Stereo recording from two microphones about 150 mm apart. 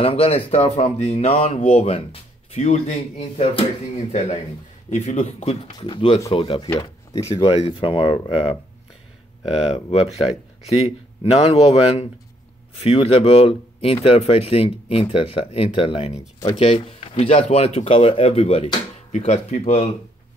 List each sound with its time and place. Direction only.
0.0 s speech: 40° left (ahead or behind)
4.8 s speech: 50° left (ahead or behind)
9.7 s speech: 45° left (ahead or behind)